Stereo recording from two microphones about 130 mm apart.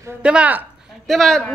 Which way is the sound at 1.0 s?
Centre (ahead or behind).